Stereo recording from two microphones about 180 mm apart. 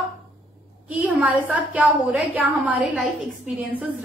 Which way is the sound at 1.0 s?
10° right (ahead or behind).